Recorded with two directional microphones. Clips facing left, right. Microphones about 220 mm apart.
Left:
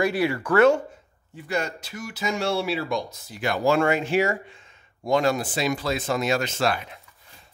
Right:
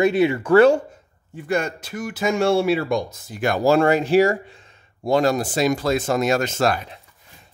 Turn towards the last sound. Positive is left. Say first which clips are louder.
# right 4 dB
turn(degrees=-45)  # may be behind; listen again after turning